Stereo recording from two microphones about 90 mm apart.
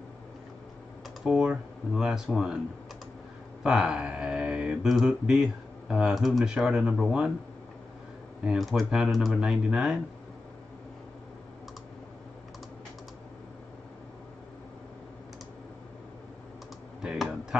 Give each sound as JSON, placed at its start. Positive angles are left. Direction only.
{"t": 1.2, "sound": "speech", "side_deg": -5}
{"t": 3.6, "sound": "speech", "side_deg": -5}
{"t": 8.5, "sound": "speech", "side_deg": 0}
{"t": 17.0, "sound": "computer keyboard", "side_deg": -10}